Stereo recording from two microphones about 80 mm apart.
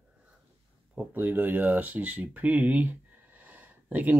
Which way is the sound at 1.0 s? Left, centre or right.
Right.